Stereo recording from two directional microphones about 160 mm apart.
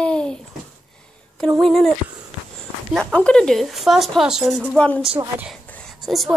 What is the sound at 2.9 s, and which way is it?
A child's voice, 5° left (ahead or behind).